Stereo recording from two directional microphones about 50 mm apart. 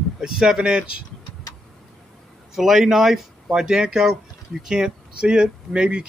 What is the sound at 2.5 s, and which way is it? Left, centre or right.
Speech, centre.